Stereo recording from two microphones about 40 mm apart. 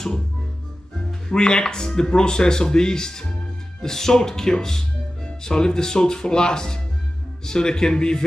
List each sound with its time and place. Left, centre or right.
1.3 s speech: centre